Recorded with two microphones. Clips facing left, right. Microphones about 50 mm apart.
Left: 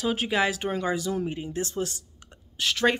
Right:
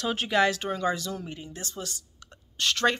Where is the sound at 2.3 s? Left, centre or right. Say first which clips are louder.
Even; centre.